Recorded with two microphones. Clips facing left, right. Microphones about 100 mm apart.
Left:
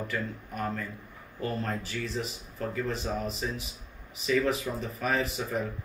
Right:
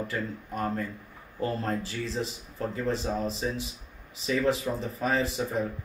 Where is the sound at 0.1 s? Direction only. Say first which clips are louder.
Right 1 dB; 35° right (ahead or behind).